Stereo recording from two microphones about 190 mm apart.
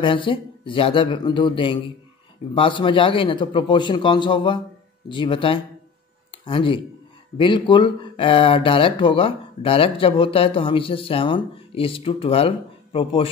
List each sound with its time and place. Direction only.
0.0 s speech: 25° left (ahead or behind)